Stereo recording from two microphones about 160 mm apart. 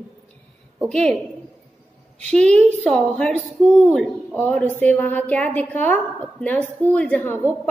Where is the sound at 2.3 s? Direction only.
5° left (ahead or behind).